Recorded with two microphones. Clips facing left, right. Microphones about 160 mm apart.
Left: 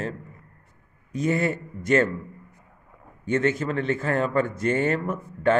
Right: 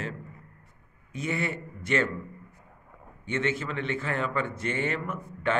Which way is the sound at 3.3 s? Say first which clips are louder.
Left 6 dB; 40° left (ahead or behind).